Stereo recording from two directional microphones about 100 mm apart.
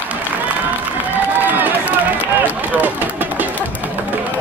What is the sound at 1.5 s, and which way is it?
Run, 20° right (ahead or behind).